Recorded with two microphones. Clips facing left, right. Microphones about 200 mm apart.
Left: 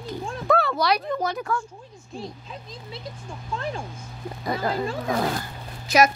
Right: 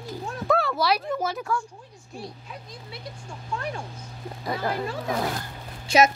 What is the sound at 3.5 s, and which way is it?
Speech, 25° left (ahead or behind).